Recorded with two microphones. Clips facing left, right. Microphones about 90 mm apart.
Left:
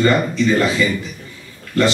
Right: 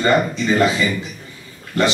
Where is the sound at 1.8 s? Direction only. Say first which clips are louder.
Left 2 dB; 15° right (ahead or behind).